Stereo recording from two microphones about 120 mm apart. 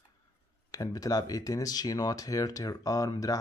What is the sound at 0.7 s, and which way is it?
Speech, 30° left (ahead or behind).